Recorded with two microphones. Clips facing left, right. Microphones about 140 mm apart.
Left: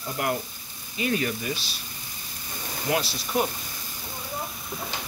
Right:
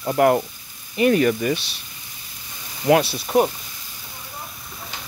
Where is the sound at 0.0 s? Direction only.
65° right (ahead or behind).